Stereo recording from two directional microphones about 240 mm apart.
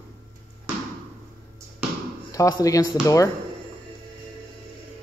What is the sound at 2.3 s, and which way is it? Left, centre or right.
Speech, centre.